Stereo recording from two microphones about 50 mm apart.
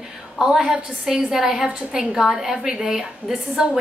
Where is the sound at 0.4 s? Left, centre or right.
Centre.